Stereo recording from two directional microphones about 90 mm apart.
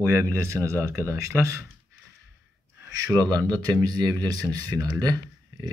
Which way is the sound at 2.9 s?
40° right (ahead or behind).